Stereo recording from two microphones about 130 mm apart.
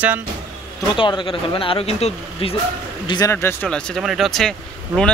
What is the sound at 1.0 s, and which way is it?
Speech, 40° left (ahead or behind).